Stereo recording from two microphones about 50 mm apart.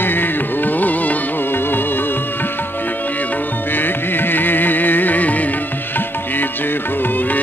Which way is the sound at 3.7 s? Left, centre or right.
Left.